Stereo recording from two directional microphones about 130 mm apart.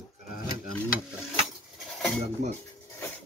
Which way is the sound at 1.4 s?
Centre (ahead or behind).